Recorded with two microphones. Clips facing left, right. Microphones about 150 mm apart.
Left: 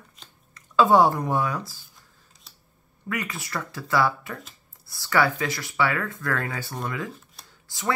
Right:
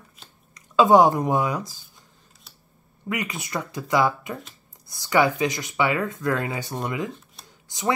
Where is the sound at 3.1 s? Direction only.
20° right (ahead or behind).